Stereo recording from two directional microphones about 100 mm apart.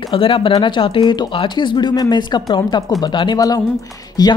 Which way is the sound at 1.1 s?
45° left (ahead or behind).